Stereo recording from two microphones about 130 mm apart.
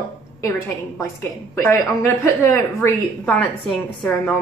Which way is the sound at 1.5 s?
20° left (ahead or behind).